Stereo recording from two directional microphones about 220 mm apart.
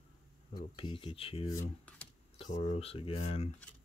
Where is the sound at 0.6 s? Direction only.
20° left (ahead or behind).